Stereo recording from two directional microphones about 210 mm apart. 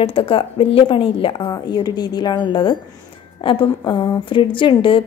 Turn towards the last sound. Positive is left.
turn(degrees=25)  # may be behind; listen again after turning